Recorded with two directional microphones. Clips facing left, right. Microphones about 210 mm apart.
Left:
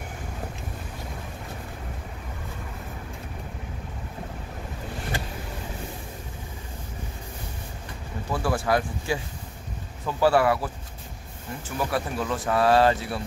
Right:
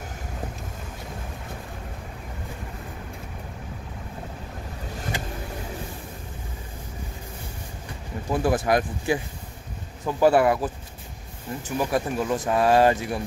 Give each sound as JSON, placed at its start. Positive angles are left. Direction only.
{"t": 8.3, "sound": "speech", "side_deg": -20}